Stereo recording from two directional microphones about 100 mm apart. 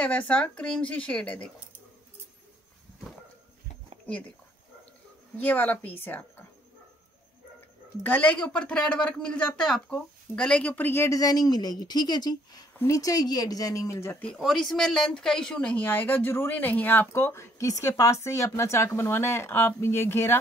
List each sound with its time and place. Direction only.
0.3 s speech: 10° left (ahead or behind)
5.4 s speech: 15° left (ahead or behind)
8.0 s speech: 15° left (ahead or behind); by 12.6 s 45° left (ahead or behind)
12.7 s speech: 30° left (ahead or behind)
14.4 s speech: 5° left (ahead or behind); by 20.3 s 25° left (ahead or behind)